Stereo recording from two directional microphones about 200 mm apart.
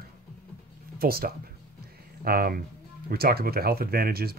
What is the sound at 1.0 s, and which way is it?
Speech, 50° right (ahead or behind).